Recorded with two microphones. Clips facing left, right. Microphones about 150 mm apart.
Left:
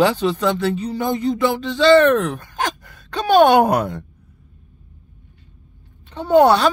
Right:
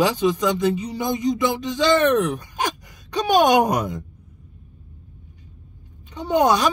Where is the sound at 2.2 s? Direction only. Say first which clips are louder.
Left 1 dB; 50° left (ahead or behind).